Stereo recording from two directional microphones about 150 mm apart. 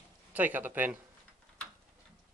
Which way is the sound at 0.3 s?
10° right (ahead or behind).